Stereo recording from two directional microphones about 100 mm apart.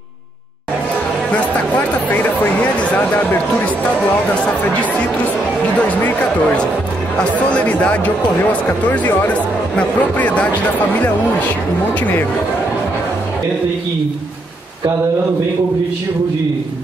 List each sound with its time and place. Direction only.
1.3 s speech: 15° left (ahead or behind)
5.8 s speech: 15° left (ahead or behind)